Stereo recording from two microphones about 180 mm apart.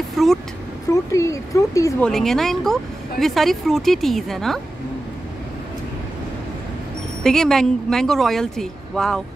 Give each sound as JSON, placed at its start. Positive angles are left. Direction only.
{"t": 0.2, "sound": "vehicle", "side_deg": 0}
{"t": 1.1, "sound": "speech", "side_deg": 15}
{"t": 2.0, "sound": "speech", "side_deg": 0}
{"t": 7.2, "sound": "speech", "side_deg": 0}